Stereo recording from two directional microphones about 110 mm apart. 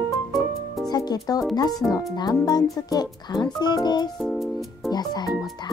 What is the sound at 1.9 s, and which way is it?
Speech, 35° left (ahead or behind).